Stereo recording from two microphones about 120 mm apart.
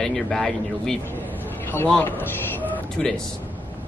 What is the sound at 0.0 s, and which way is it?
Speech, 5° left (ahead or behind).